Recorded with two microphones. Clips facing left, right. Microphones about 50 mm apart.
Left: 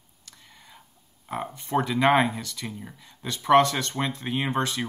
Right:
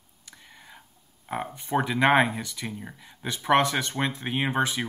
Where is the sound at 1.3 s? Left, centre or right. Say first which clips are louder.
Even; centre.